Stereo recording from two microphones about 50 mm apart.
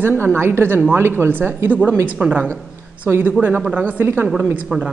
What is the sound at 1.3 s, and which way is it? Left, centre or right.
Speech, right.